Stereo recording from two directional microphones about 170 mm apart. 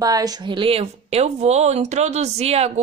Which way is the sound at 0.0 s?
20° right (ahead or behind).